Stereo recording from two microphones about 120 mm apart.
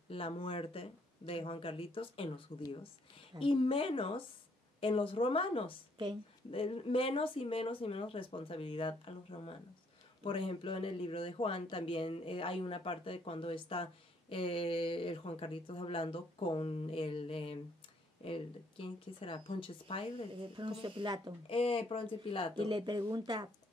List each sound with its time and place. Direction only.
0.1 s speech: 50° left (ahead or behind)
20.5 s speech: 45° right (ahead or behind)
21.5 s speech: 45° left (ahead or behind)
22.7 s speech: 40° right (ahead or behind)